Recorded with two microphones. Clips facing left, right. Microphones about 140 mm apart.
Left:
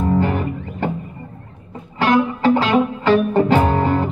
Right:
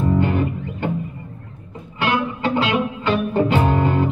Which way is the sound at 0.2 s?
40° left (ahead or behind).